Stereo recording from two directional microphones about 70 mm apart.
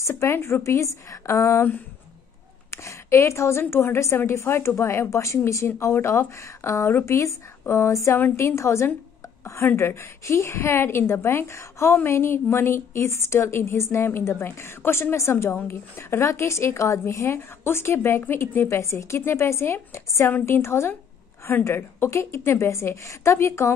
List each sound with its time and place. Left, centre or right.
0.0 s a woman's voice: left
2.7 s a woman's voice: left